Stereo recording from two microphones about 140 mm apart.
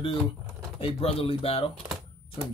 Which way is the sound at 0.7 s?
40° left (ahead or behind).